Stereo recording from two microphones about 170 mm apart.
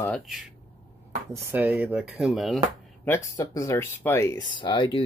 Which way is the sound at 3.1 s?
15° left (ahead or behind).